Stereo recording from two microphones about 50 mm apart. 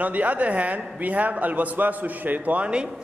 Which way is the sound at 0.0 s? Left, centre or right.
Right.